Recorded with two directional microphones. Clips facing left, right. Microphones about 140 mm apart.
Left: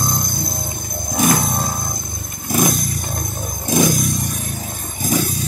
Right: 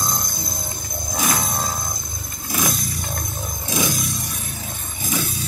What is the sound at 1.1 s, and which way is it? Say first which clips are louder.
Roaring cats: left 6 dB; 50° left (ahead or behind).